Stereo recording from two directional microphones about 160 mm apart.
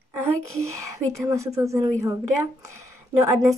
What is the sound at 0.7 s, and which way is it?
Speech, 20° right (ahead or behind).